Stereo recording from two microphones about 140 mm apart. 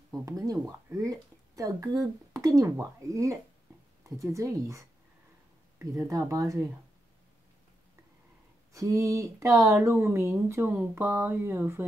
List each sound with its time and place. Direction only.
0.1 s speech: 25° right (ahead or behind)
6.0 s speech: 25° right (ahead or behind)
8.7 s speech: 20° right (ahead or behind)